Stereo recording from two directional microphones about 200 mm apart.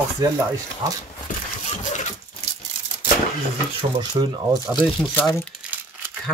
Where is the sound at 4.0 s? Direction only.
20° right (ahead or behind).